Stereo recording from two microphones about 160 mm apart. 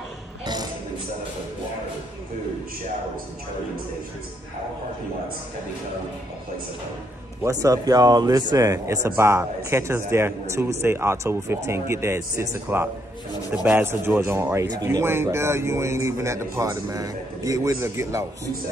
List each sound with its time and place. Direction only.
7.4 s speech: 20° right (ahead or behind)